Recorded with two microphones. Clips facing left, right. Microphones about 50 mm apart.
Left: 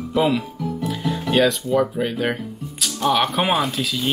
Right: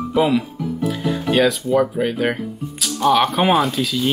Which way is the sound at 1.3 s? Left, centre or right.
Centre.